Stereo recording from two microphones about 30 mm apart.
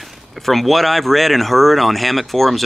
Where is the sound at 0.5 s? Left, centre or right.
Centre.